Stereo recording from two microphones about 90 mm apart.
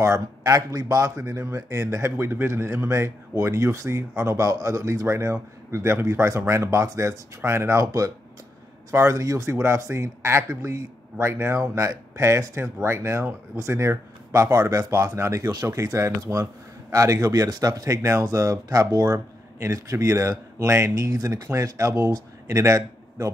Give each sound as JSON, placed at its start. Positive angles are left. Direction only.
{"t": 0.0, "sound": "speech", "side_deg": -35}
{"t": 18.0, "sound": "speech", "side_deg": -35}